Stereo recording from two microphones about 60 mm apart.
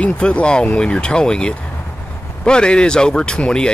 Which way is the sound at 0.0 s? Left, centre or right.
Centre.